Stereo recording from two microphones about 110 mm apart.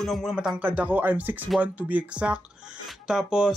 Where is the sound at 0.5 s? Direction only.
15° right (ahead or behind).